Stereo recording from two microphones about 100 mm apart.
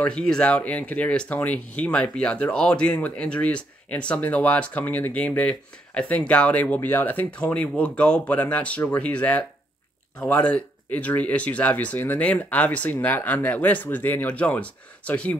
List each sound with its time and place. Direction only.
0.0 s speech: 5° left (ahead or behind)